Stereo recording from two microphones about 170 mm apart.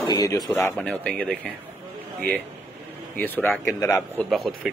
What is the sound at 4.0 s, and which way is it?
Speech, centre (ahead or behind).